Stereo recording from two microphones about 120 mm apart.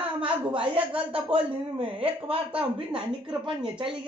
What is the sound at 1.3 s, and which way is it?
Speech, 50° right (ahead or behind).